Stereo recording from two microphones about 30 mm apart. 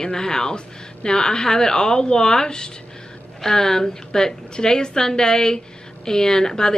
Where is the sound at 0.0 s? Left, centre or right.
Left.